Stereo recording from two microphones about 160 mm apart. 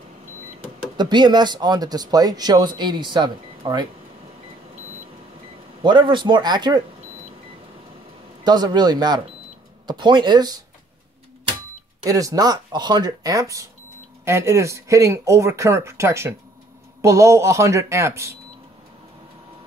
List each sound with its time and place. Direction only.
0.9 s speech: 30° right (ahead or behind)
5.8 s speech: 30° right (ahead or behind)
8.5 s speech: 25° right (ahead or behind)
12.0 s speech: 20° right (ahead or behind)